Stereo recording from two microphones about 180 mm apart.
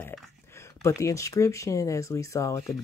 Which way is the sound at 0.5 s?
15° left (ahead or behind).